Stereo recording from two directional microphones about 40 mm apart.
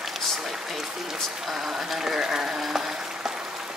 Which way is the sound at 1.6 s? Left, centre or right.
Centre.